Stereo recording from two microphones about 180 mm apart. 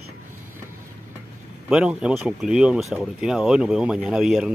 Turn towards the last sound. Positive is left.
turn(degrees=0)  # may be behind; listen again after turning